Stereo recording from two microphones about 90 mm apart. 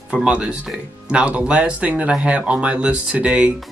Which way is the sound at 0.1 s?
15° right (ahead or behind).